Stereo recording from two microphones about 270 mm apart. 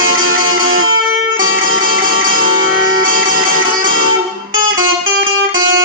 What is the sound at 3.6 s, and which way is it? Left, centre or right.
Music, right.